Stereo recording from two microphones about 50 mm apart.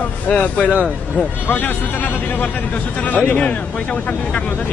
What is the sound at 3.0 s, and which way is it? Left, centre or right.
Speech, left.